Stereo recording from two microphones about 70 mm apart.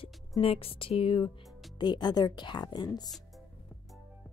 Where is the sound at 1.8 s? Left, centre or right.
Left.